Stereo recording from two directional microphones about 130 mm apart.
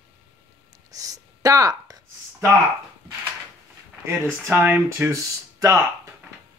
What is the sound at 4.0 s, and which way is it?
Speech, 20° right (ahead or behind).